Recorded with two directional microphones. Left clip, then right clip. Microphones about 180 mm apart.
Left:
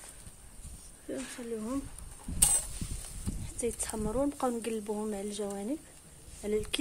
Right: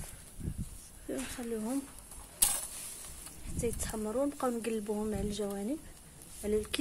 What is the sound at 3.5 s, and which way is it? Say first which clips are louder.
A woman's voice: left 1 dB; 10° left (ahead or behind).